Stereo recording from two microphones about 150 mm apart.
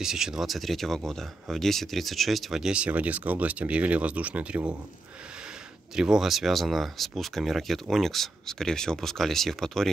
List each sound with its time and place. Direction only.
0.0 s speech: 5° right (ahead or behind)
5.9 s speech: 5° right (ahead or behind)